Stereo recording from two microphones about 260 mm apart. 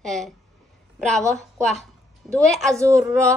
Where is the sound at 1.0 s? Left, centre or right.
Centre.